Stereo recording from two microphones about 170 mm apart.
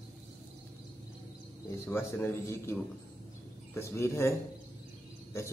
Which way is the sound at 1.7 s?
15° left (ahead or behind).